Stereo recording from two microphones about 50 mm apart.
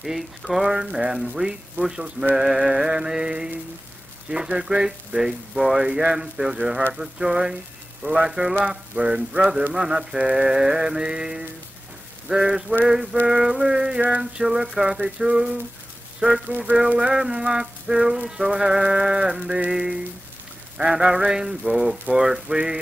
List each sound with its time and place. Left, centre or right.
0.0 s frying: centre
0.7 s music: centre
8.6 s a sound: centre
9.8 s music: centre
16.2 s speech: centre
16.4 s a sound: right
17.0 s music: centre